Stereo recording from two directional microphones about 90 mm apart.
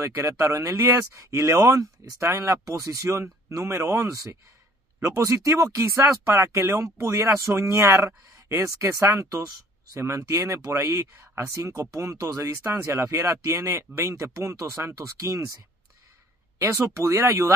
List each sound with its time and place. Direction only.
0.0 s speech: 30° right (ahead or behind)
16.5 s speech: 35° right (ahead or behind)